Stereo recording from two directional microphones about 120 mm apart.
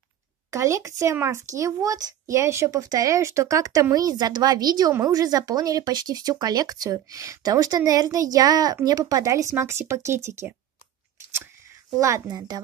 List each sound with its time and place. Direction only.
0.5 s speech: 25° right (ahead or behind)
12.0 s speech: 30° right (ahead or behind)